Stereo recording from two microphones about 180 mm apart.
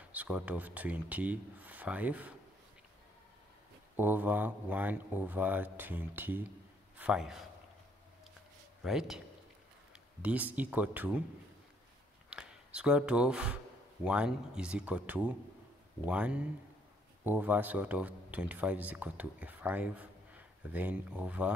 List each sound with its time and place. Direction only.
0.0 s speech: 10° right (ahead or behind)
3.9 s speech: 10° right (ahead or behind)
8.8 s speech: centre (ahead or behind)
10.2 s speech: 10° right (ahead or behind)
12.3 s speech: 5° right (ahead or behind)